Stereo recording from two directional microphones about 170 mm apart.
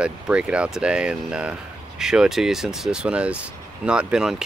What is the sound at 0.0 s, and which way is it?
Speech, 5° right (ahead or behind).